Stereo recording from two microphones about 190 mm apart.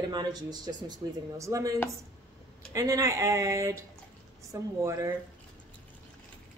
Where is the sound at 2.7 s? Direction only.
15° right (ahead or behind).